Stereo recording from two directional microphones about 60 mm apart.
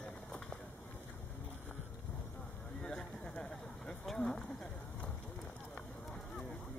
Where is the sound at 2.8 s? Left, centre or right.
Centre.